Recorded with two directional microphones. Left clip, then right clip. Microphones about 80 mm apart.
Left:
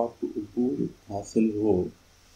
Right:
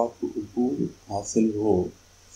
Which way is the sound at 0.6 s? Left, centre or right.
Right.